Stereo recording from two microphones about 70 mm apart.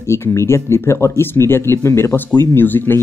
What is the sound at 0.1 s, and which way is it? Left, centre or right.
Speech, left.